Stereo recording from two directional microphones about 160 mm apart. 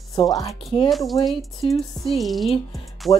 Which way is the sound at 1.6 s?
35° left (ahead or behind).